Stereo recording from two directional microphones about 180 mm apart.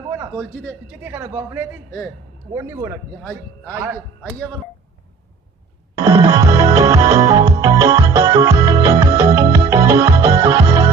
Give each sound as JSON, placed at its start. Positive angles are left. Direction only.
{"t": 1.0, "sound": "a man's voice", "side_deg": -15}
{"t": 3.2, "sound": "a man's voice", "side_deg": 10}
{"t": 5.9, "sound": "music", "side_deg": -20}